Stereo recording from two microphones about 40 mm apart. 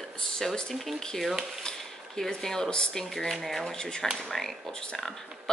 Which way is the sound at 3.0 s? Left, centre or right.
Centre.